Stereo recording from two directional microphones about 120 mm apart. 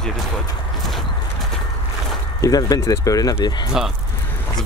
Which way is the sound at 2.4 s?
30° left (ahead or behind).